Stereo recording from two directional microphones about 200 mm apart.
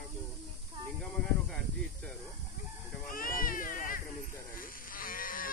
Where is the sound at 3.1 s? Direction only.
45° left (ahead or behind).